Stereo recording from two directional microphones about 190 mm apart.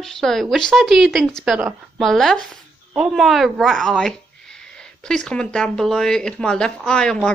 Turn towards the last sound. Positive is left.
turn(degrees=5)  # may be behind; listen again after turning